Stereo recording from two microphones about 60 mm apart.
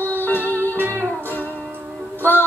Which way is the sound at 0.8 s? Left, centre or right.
Right.